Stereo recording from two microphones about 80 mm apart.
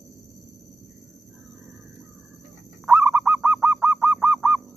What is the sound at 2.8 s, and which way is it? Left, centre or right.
Goose, right.